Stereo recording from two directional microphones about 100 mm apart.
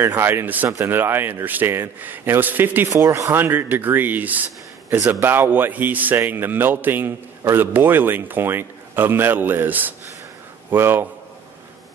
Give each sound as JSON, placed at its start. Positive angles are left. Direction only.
{"t": 0.0, "sound": "a man's voice", "side_deg": -25}
{"t": 2.9, "sound": "a man's voice", "side_deg": -35}